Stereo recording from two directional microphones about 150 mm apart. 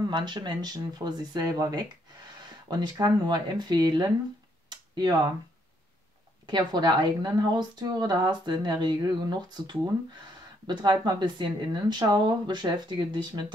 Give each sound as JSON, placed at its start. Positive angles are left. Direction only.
{"t": 0.0, "sound": "speech", "side_deg": -30}
{"t": 4.6, "sound": "tick-tock", "side_deg": -30}
{"t": 6.4, "sound": "speech", "side_deg": -30}